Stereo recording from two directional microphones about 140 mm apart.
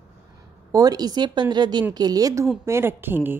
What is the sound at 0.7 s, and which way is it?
A woman's voice, 25° right (ahead or behind).